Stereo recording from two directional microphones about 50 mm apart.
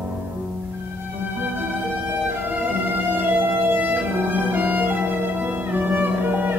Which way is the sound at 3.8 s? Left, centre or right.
Right.